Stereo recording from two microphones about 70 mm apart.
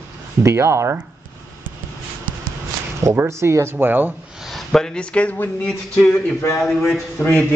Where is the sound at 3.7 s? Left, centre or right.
Right.